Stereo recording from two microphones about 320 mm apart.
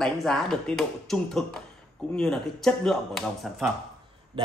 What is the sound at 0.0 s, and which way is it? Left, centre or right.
Speech, centre.